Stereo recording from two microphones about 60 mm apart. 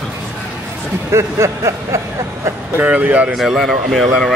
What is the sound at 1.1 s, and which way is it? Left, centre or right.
Speech, right.